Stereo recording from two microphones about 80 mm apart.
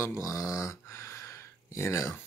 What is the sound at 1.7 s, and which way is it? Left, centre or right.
Speech, left.